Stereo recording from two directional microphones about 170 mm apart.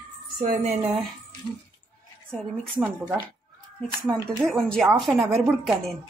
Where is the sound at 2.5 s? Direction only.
5° left (ahead or behind).